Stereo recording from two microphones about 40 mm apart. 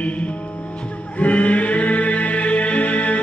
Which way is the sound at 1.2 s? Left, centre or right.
Left.